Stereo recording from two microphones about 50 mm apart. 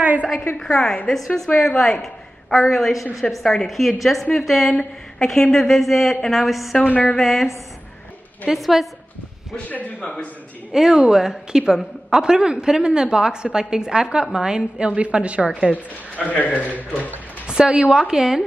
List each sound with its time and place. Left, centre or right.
0.0 s a sound: right
0.7 s a woman's voice: centre
6.9 s speech: left
7.2 s a woman's voice: centre
8.5 s a woman's voice: centre
9.7 s a man's voice: left
10.7 s a woman's voice: centre
15.7 s a man's voice: left
17.5 s a woman's voice: centre